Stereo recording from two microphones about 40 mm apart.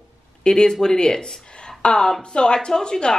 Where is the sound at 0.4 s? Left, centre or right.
Left.